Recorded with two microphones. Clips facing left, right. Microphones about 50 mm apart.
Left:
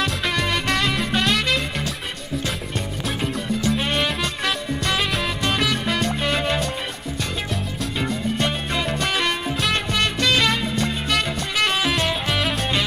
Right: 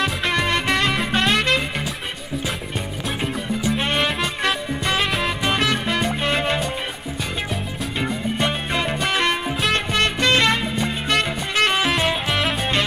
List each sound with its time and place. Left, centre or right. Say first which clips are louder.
0.0 s music: right 2 dB; centre
3.6 s music: right 1 dB; centre
8.0 s music: right 1 dB; centre